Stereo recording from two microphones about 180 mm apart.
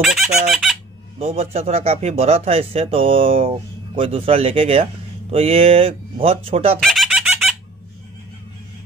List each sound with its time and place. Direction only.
0.0 s squeak: centre (ahead or behind)
1.2 s speech: 35° right (ahead or behind)
6.8 s a sound: centre (ahead or behind)